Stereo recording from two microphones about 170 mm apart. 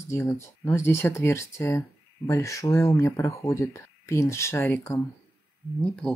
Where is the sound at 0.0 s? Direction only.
15° left (ahead or behind).